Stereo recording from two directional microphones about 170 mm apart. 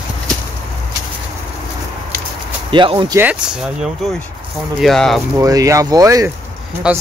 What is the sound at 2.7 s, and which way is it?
Speech, 30° right (ahead or behind).